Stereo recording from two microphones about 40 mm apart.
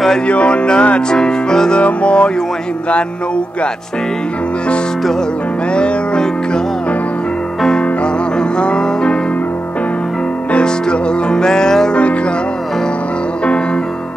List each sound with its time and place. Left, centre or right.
0.3 s music: left
1.8 s music: left
5.7 s music: left
7.6 s music: centre
10.5 s music: left
11.9 s music: left